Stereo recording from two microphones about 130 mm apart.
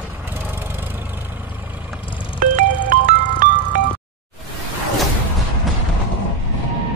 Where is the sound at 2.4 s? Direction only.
80° right.